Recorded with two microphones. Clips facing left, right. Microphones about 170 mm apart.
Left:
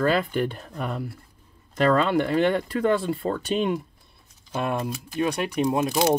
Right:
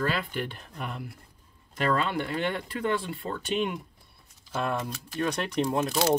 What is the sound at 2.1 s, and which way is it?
Speech, 40° left (ahead or behind).